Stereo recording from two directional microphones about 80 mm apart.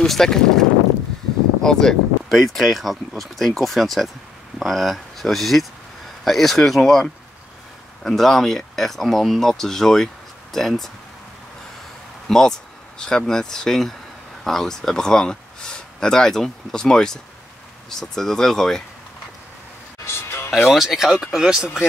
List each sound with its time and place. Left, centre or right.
0.0 s speech: centre
12.3 s speech: centre
20.1 s music: left
20.5 s speech: centre